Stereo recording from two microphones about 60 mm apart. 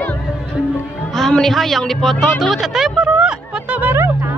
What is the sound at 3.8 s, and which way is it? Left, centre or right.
Music, right.